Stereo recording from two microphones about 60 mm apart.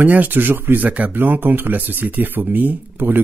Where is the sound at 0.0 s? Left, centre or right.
Right.